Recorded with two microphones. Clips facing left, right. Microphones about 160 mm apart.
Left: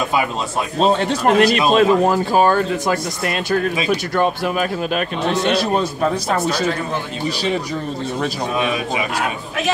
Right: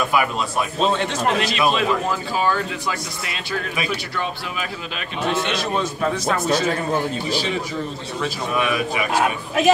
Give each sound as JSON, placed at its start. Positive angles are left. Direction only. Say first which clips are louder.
{"t": 0.7, "sound": "a man's voice", "louder": "left 6 dB", "side_deg": 40}
{"t": 8.5, "sound": "speech", "louder": "right 1 dB", "side_deg": 20}